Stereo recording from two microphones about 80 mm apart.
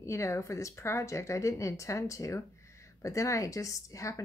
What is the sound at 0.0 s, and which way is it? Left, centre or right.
A woman's voice, left.